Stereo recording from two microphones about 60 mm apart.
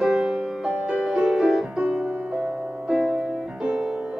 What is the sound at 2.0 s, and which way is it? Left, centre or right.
Music, right.